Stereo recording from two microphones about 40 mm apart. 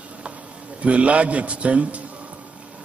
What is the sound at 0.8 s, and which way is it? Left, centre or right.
A man's voice, right.